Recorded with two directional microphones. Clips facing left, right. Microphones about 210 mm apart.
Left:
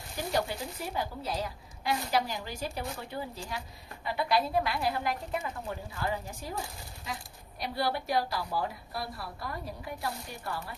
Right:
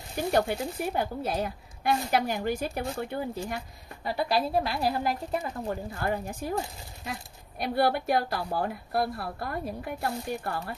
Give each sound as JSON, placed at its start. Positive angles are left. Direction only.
{"t": 0.3, "sound": "a woman's voice", "side_deg": -55}
{"t": 4.0, "sound": "a woman's voice", "side_deg": -40}
{"t": 5.9, "sound": "a woman's voice", "side_deg": -55}